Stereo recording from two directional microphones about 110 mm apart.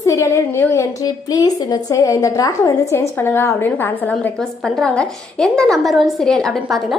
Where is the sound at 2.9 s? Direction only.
20° left (ahead or behind).